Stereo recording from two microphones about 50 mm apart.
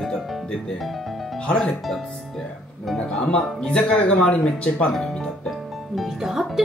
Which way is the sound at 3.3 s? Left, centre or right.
Left.